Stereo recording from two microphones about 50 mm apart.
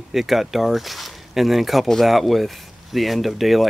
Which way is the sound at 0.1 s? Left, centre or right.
Centre.